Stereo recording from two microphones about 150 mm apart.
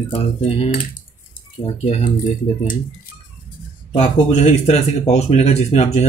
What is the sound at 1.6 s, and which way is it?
Speech, 45° left (ahead or behind).